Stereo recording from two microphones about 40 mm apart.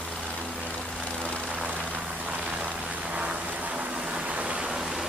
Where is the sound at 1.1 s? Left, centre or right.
Left.